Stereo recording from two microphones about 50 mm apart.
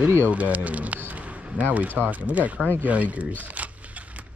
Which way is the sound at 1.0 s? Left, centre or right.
Right.